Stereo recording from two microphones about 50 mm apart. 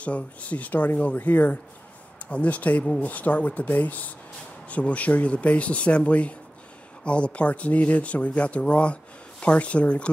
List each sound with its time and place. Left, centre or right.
0.0 s speech: left